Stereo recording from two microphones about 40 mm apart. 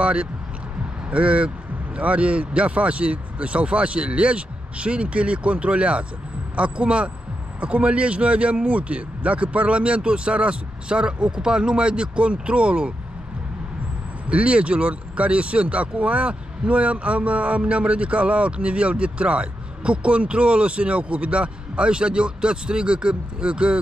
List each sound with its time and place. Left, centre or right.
0.0 s speech: right
14.3 s speech: right